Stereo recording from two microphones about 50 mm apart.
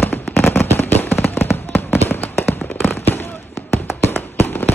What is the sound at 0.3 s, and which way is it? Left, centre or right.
Fireworks, left.